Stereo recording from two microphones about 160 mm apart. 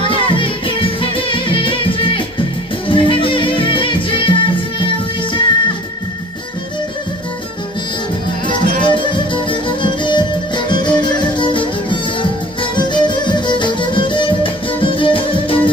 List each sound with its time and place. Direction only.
0.1 s music: 35° left (ahead or behind)
8.8 s music: 30° left (ahead or behind)